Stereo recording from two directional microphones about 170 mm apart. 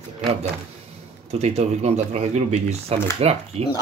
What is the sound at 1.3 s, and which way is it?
Speech, 40° right (ahead or behind).